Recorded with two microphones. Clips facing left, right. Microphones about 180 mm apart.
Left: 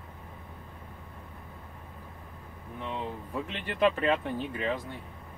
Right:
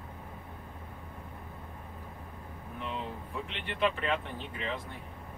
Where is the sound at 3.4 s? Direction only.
45° left (ahead or behind).